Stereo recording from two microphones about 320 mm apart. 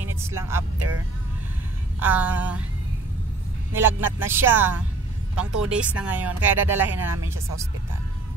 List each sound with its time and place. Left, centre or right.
0.1 s speech: centre
0.7 s speech: right
2.0 s speech: centre
4.0 s speech: centre